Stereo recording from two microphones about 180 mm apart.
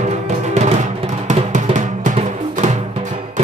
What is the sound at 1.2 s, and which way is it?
Music, 40° right (ahead or behind).